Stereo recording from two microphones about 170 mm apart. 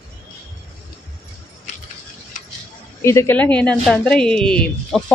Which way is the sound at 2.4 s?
45° left (ahead or behind).